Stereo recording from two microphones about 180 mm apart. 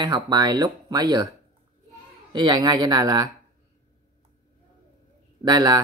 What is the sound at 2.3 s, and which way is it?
Speech, 25° right (ahead or behind).